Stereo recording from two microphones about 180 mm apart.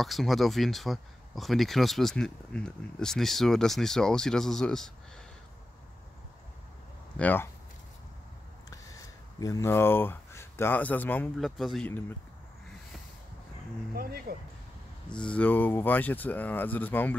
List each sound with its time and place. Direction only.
0.0 s speech: centre (ahead or behind)
7.2 s speech: 10° left (ahead or behind)
9.4 s speech: 20° left (ahead or behind)
11.3 s speech: centre (ahead or behind)
14.3 s speech: 55° right (ahead or behind)
15.0 s speech: 5° left (ahead or behind)